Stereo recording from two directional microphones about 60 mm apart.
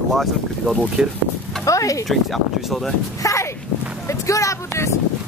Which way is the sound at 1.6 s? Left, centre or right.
Left.